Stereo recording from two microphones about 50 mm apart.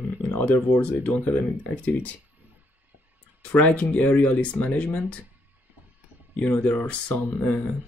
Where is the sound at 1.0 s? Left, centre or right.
Left.